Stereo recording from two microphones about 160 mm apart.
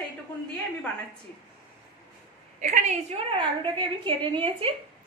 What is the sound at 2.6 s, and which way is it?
Speech, 45° right (ahead or behind).